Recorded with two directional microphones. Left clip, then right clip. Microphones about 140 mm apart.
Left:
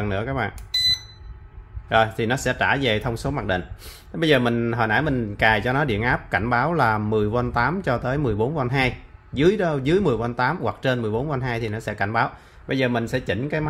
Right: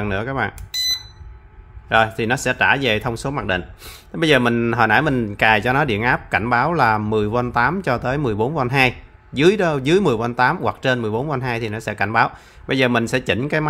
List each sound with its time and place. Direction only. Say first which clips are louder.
0.0 s speech: right 3 dB; 20° right (ahead or behind)
1.9 s speech: right 3 dB; 15° right (ahead or behind)
3.8 s a man's voice: right 3 dB; 25° right (ahead or behind)
12.6 s speech: right 5 dB; 35° right (ahead or behind)